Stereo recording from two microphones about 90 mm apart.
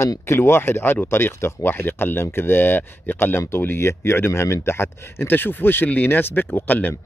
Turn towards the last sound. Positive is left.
turn(degrees=20)  # may be behind; listen again after turning